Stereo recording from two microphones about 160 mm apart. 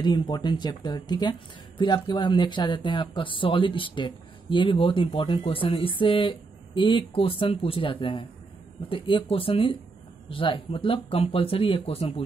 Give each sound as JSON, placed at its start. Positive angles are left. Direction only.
{"t": 0.0, "sound": "speech", "side_deg": 30}